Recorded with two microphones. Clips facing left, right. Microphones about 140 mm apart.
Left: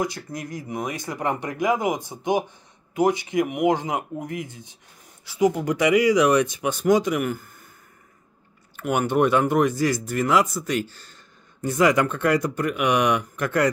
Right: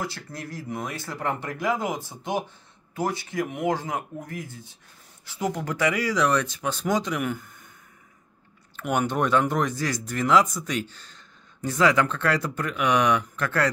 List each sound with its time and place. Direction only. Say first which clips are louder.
0.0 s speech: left 6 dB; 15° left (ahead or behind)
8.7 s speech: left 4 dB; 10° left (ahead or behind)